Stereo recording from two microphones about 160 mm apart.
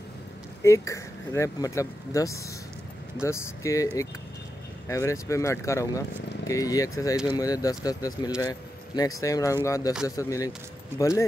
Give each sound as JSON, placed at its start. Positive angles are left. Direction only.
{"t": 0.7, "sound": "speech", "side_deg": 20}